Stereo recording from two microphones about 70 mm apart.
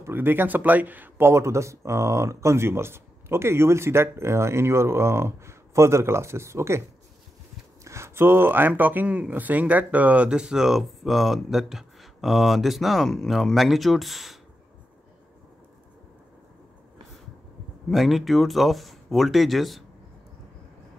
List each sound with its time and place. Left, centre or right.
0.0 s speech: right
7.8 s speech: right; by 14.4 s centre
17.8 s speech: centre